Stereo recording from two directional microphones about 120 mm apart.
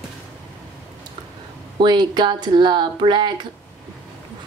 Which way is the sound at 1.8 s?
40° right (ahead or behind).